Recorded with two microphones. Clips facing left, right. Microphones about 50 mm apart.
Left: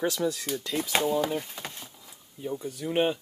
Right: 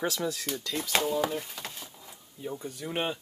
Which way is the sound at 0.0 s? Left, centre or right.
Centre.